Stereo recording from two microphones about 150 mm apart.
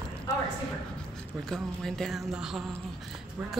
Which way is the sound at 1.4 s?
5° left (ahead or behind).